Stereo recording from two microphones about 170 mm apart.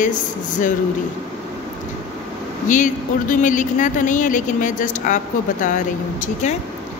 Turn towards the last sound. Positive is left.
turn(degrees=50)  # may be behind; listen again after turning